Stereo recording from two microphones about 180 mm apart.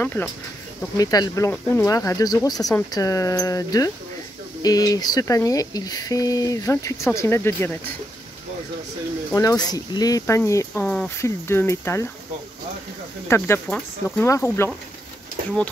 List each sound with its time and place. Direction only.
0.0 s speech: 10° left (ahead or behind)
9.3 s speech: 20° left (ahead or behind)
13.3 s speech: 15° left (ahead or behind)